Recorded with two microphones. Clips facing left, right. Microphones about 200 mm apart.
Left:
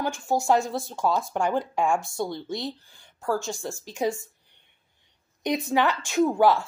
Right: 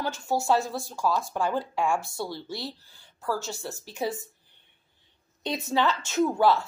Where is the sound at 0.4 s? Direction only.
15° left (ahead or behind).